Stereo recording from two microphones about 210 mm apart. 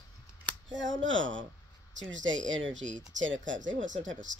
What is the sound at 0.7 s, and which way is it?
Speech, 60° right (ahead or behind).